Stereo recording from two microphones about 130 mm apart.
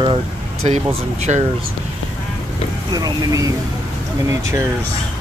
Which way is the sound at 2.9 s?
30° right (ahead or behind).